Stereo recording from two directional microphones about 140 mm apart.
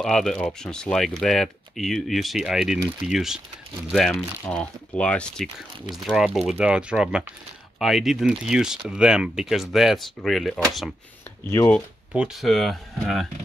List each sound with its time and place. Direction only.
0.0 s speech: centre (ahead or behind)
11.4 s speech: 15° left (ahead or behind)
12.1 s speech: centre (ahead or behind)